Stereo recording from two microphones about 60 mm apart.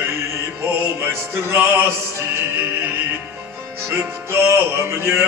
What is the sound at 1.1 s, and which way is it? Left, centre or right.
Music, right.